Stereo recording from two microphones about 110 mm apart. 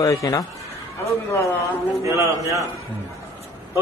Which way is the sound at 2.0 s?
30° right (ahead or behind).